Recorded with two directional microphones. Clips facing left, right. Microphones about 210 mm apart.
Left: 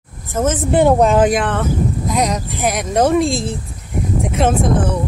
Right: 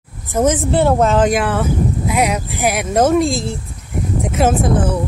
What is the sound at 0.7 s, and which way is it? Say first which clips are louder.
Speech: left 2 dB; 15° left (ahead or behind).